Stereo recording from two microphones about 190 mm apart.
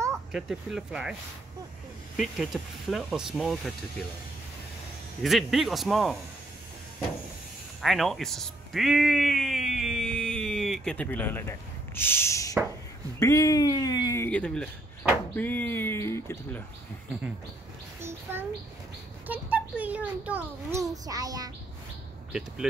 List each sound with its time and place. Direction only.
0.3 s speech: centre (ahead or behind)
2.1 s speech: centre (ahead or behind)
5.2 s speech: centre (ahead or behind)
7.8 s speech: centre (ahead or behind)
18.3 s a child's voice: 10° right (ahead or behind)